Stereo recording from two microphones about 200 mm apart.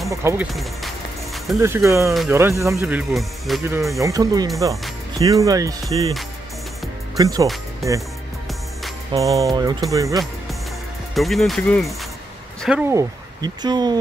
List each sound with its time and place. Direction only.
0.1 s speech: 15° right (ahead or behind)
0.6 s music: centre (ahead or behind)
1.6 s speech: 15° right (ahead or behind)
3.6 s speech: 15° right (ahead or behind)
7.2 s speech: 20° right (ahead or behind)
9.2 s speech: 15° right (ahead or behind)
11.1 s speech: centre (ahead or behind)
12.6 s speech: 10° right (ahead or behind)